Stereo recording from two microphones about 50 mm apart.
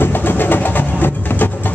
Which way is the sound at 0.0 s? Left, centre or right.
Left.